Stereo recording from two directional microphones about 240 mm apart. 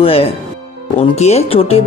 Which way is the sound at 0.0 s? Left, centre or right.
Left.